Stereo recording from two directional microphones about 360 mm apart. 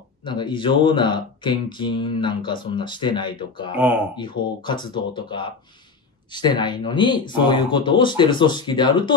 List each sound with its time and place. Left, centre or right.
0.2 s speech: centre
3.7 s speech: centre
4.2 s speech: centre